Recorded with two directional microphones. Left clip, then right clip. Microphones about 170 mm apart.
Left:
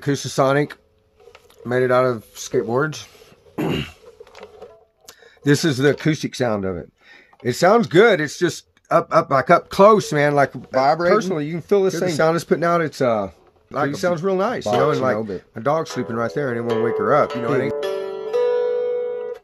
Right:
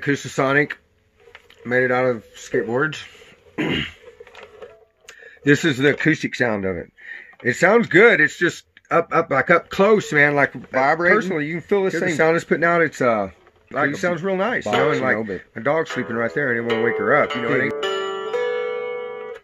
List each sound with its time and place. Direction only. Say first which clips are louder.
0.0 s speech: left 2 dB; 50° left (ahead or behind)
3.5 s a sound: right 1 dB; 55° left (ahead or behind)
5.4 s speech: right 1 dB; 50° left (ahead or behind)
17.8 s zither: right 1 dB; 10° right (ahead or behind)
18.8 s music: left 5 dB; 5° right (ahead or behind)